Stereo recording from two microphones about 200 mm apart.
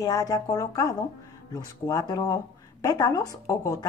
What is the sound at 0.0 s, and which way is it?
Speech, 20° left (ahead or behind).